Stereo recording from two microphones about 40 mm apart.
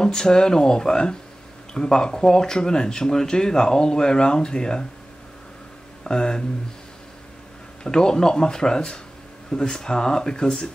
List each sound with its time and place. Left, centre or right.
0.0 s speech: centre
6.0 s speech: centre
7.8 s speech: centre